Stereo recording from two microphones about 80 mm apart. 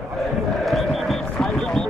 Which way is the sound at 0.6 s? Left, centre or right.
Centre.